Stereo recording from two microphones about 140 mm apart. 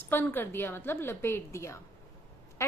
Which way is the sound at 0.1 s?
15° left (ahead or behind).